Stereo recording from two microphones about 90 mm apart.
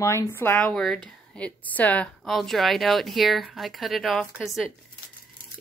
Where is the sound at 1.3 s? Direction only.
15° left (ahead or behind).